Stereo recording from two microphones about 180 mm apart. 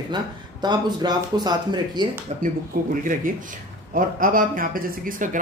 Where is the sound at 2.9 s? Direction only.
50° right (ahead or behind).